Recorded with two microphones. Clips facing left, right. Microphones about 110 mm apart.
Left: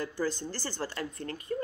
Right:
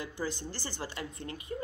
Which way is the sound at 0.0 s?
15° right (ahead or behind).